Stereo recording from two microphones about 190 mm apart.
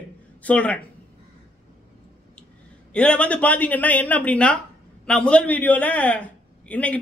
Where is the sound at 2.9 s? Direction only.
5° left (ahead or behind).